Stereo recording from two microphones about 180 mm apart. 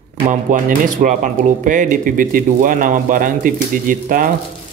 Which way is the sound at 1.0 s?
45° right (ahead or behind).